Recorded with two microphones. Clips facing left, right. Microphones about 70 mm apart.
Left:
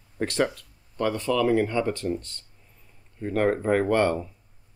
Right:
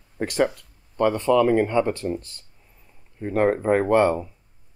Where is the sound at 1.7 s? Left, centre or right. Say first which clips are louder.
Right 4 dB; centre.